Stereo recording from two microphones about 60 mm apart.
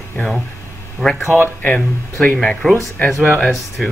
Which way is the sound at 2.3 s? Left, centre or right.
Centre.